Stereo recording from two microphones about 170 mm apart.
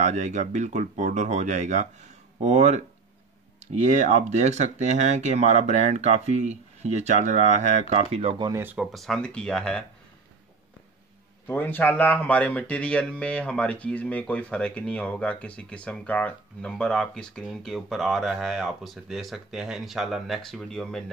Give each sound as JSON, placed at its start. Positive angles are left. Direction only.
{"t": 0.0, "sound": "speech", "side_deg": -45}
{"t": 8.5, "sound": "speech", "side_deg": -15}
{"t": 8.7, "sound": "speech", "side_deg": 0}
{"t": 11.4, "sound": "speech", "side_deg": 10}